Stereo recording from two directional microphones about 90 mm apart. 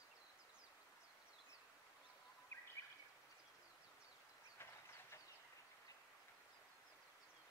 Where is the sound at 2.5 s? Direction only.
30° left (ahead or behind).